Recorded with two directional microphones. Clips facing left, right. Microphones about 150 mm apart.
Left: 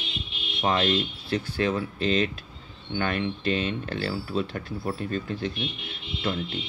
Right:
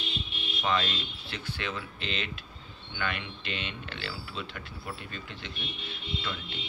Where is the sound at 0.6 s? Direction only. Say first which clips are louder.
Left 6 dB; 35° left (ahead or behind).